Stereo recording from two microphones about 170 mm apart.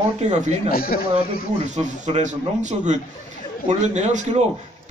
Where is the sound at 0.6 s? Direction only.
60° left (ahead or behind).